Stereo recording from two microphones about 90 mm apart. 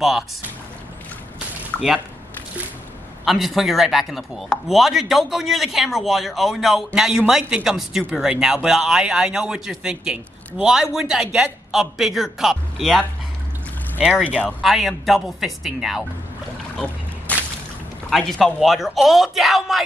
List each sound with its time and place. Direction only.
1.7 s squish: 10° left (ahead or behind)
3.3 s a man's voice: centre (ahead or behind)
14.6 s a man's voice: centre (ahead or behind)
17.3 s a sound: 15° left (ahead or behind)
18.1 s a man's voice: centre (ahead or behind)